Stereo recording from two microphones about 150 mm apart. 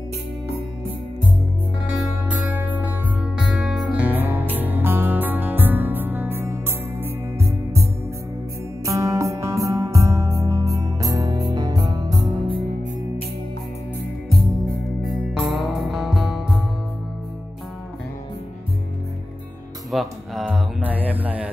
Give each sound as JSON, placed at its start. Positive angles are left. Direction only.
{"t": 1.9, "sound": "music", "side_deg": -10}
{"t": 8.8, "sound": "music", "side_deg": -20}
{"t": 14.3, "sound": "music", "side_deg": 0}
{"t": 19.9, "sound": "music", "side_deg": 0}
{"t": 20.8, "sound": "music", "side_deg": -10}